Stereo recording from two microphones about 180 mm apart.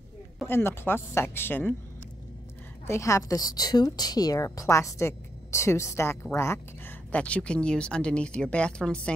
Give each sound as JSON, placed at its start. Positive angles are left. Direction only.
{"t": 0.5, "sound": "a woman's voice", "side_deg": 10}
{"t": 2.9, "sound": "a woman's voice", "side_deg": 15}